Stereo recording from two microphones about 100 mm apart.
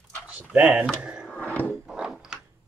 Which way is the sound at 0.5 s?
15° right (ahead or behind).